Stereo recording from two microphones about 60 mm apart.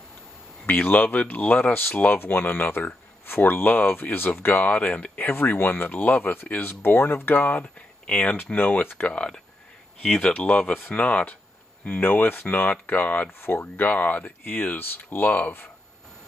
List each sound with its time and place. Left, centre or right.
0.7 s speech: left
5.1 s speech: left
13.3 s speech: left